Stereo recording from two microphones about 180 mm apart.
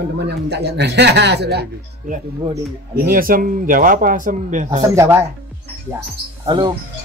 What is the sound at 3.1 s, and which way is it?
Speech, 50° right (ahead or behind).